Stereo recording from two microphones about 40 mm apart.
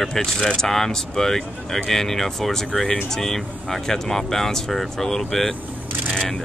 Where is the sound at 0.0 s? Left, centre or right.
Centre.